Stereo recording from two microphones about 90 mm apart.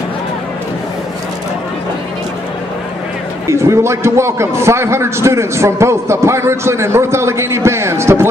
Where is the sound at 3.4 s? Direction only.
30° right (ahead or behind).